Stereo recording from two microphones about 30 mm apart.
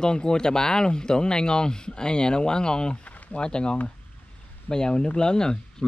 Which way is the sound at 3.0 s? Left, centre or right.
Left.